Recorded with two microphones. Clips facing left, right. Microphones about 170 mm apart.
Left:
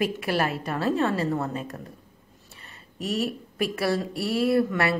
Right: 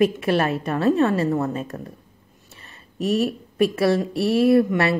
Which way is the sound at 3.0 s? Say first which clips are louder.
Right 6 dB; 25° right (ahead or behind).